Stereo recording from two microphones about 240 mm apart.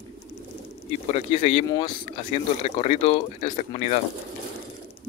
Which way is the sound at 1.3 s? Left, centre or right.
Left.